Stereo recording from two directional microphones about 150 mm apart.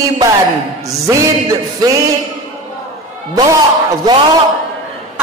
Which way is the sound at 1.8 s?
25° right (ahead or behind).